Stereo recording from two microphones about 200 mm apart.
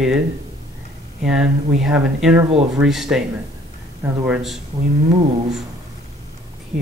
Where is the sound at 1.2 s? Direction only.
5° right (ahead or behind).